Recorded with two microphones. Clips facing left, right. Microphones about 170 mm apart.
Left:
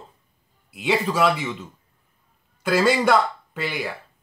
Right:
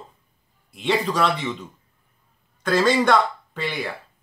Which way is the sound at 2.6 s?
10° left (ahead or behind).